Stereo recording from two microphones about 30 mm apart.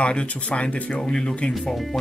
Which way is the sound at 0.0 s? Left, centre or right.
Left.